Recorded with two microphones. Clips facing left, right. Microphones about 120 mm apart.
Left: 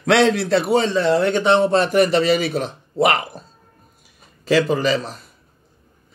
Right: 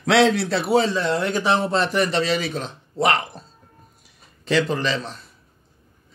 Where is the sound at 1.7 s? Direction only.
50° left (ahead or behind).